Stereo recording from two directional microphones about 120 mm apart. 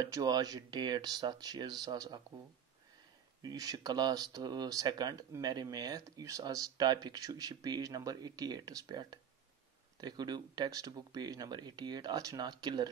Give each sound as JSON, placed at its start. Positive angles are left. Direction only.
{"t": 0.0, "sound": "speech", "side_deg": -30}
{"t": 3.4, "sound": "speech", "side_deg": -30}